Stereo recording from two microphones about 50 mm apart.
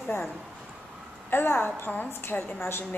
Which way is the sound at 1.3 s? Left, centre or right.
Left.